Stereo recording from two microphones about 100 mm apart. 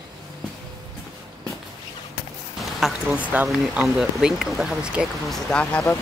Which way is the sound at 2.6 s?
5° right (ahead or behind).